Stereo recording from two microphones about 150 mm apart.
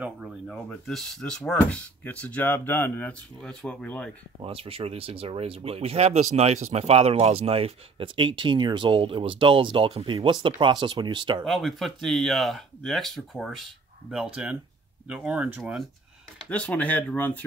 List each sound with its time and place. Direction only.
0.0 s speech: 5° right (ahead or behind)
4.5 s speech: 40° right (ahead or behind)
11.4 s speech: centre (ahead or behind)
16.4 s speech: 10° left (ahead or behind)